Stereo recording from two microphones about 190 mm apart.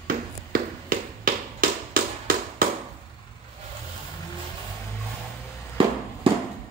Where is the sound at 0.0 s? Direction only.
50° right (ahead or behind).